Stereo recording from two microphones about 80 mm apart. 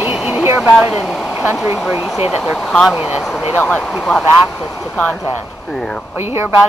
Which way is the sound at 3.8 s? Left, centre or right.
Centre.